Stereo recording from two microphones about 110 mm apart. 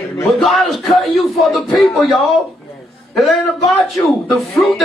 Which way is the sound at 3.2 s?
Centre (ahead or behind).